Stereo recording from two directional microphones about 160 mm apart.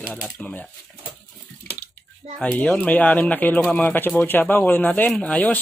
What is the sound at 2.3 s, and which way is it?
Speech, 10° left (ahead or behind).